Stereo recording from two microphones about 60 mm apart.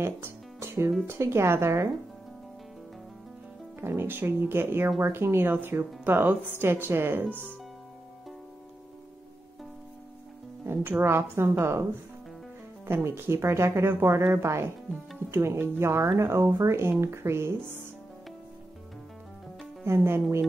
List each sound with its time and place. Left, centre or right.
0.0 s music: right
1.0 s speech: right
3.8 s speech: right
10.6 s speech: right
12.8 s speech: right
19.8 s speech: right